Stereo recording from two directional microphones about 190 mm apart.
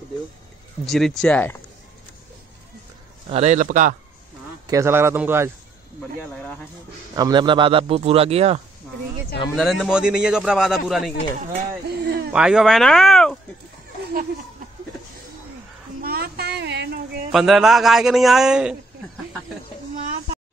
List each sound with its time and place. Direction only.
0.8 s a man's voice: centre (ahead or behind)
3.3 s a man's voice: 35° right (ahead or behind)
4.6 s a man's voice: 15° right (ahead or behind)
7.2 s speech: 20° right (ahead or behind)
9.6 s a man's voice: centre (ahead or behind)
12.0 s a sound: 55° right (ahead or behind)
12.3 s speech: 5° right (ahead or behind)
16.0 s a sound: 55° right (ahead or behind)
17.3 s a man's voice: centre (ahead or behind)